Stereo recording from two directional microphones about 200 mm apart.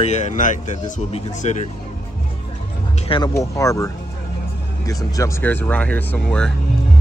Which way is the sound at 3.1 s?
20° left (ahead or behind).